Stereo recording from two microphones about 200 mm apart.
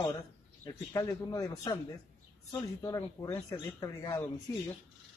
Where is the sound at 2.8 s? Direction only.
15° left (ahead or behind).